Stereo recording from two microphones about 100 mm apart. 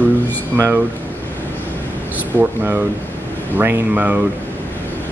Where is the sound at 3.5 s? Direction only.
20° right (ahead or behind).